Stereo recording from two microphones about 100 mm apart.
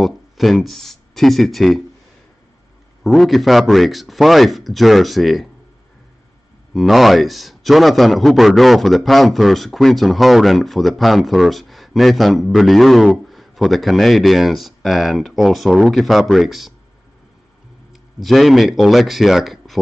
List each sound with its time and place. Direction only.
0.0 s speech: centre (ahead or behind)
3.0 s a man's voice: centre (ahead or behind)
6.7 s a man's voice: centre (ahead or behind)
18.2 s a man's voice: centre (ahead or behind)